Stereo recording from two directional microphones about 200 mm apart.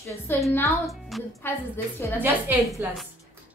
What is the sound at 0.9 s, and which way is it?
Speech, centre (ahead or behind).